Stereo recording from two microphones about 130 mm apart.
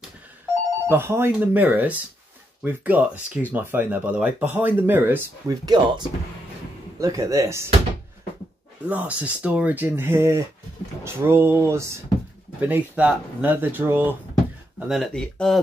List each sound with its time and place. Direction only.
0.8 s speech: 20° right (ahead or behind)
5.5 s speech: 35° right (ahead or behind)
8.8 s speech: 10° right (ahead or behind)
14.9 s speech: 5° left (ahead or behind)